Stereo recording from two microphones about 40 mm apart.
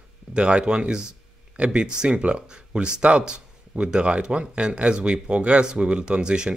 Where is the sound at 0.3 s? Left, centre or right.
Right.